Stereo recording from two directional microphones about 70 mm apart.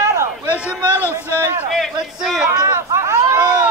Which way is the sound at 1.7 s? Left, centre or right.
Centre.